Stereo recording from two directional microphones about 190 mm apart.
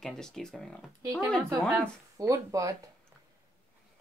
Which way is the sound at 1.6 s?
15° right (ahead or behind).